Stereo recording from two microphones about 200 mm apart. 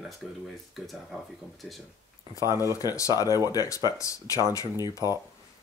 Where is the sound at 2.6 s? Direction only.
15° left (ahead or behind).